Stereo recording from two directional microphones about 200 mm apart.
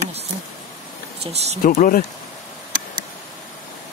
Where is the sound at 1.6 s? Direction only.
45° left (ahead or behind).